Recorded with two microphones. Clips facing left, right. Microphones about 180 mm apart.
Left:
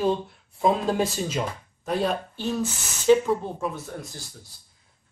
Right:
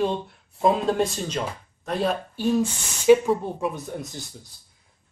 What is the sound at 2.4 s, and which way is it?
Speech, 10° right (ahead or behind).